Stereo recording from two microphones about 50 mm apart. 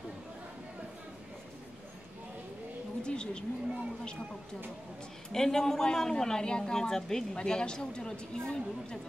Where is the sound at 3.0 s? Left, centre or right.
Centre.